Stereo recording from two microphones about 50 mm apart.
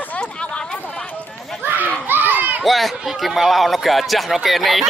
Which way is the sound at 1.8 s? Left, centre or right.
Right.